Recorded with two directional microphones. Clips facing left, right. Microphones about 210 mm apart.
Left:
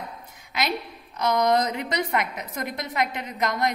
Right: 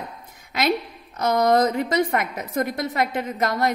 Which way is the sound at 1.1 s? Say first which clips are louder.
Right 3 dB; 45° right (ahead or behind).